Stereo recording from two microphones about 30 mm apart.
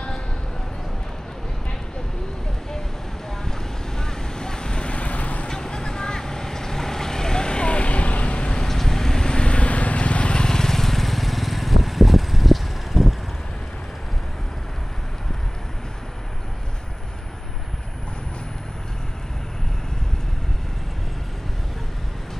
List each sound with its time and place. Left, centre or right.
4.0 s vehicle: left
4.9 s vehicle: left
5.5 s vehicle: left
8.6 s vehicle: centre; by 10.3 s left
10.3 s vehicle: left; by 13.1 s centre